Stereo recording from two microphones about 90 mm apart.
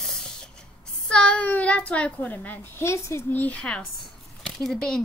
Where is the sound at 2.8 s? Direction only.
30° left (ahead or behind); by 5.0 s 5° left (ahead or behind).